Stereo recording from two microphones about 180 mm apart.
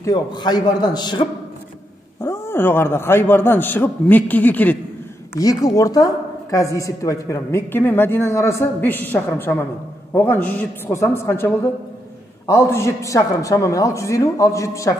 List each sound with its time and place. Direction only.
0.0 s a man's voice: 25° left (ahead or behind)
2.2 s a woman's voice: 15° left (ahead or behind)
5.4 s a woman's voice: 20° left (ahead or behind)